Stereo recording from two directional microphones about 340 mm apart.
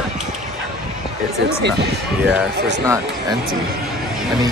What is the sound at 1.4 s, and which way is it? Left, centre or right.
Speech, right.